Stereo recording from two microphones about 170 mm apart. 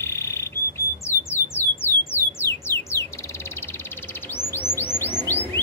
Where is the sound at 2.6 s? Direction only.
15° left (ahead or behind).